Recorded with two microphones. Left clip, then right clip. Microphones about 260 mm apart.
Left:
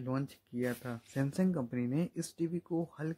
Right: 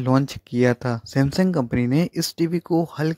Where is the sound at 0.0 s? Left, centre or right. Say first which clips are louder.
Right 17 dB; right.